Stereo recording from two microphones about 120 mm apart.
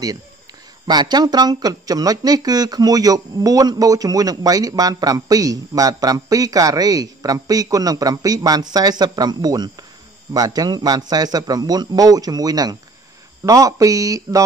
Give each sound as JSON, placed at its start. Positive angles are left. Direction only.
{"t": 0.8, "sound": "speech", "side_deg": -35}